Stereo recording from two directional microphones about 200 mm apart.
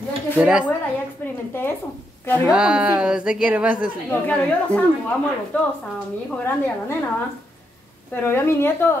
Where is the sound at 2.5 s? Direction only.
5° right (ahead or behind).